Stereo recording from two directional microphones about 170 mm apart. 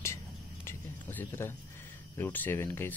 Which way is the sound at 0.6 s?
10° left (ahead or behind).